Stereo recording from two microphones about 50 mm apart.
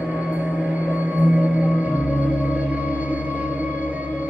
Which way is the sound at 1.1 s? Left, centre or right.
Right.